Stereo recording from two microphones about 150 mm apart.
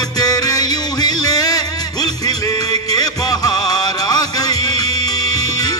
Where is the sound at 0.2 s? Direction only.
25° left (ahead or behind).